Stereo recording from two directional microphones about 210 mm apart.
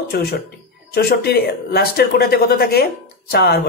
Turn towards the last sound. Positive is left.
turn(degrees=50)  # may be behind; listen again after turning